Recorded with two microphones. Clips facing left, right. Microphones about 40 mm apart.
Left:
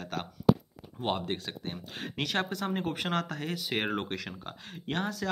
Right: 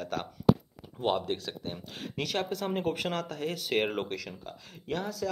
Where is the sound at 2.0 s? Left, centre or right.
Left.